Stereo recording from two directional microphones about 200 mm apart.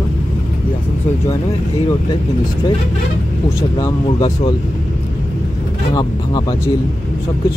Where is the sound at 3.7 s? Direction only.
25° left (ahead or behind).